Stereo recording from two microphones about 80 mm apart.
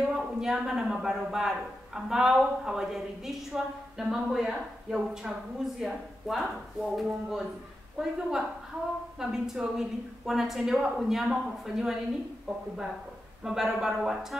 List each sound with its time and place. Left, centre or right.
0.0 s a woman's voice: centre
13.4 s a woman's voice: centre